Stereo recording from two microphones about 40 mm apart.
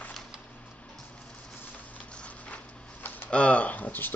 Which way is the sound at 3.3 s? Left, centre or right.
Left.